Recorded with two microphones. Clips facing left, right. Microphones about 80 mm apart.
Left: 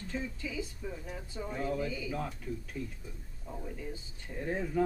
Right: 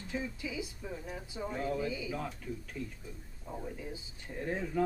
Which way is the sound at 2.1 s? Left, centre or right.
Centre.